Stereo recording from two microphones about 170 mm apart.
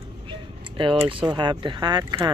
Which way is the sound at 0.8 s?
30° right (ahead or behind).